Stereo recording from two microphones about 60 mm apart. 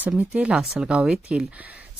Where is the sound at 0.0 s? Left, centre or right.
Right.